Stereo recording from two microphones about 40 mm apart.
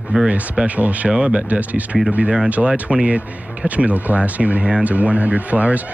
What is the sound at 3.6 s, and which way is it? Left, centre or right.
Speech, right.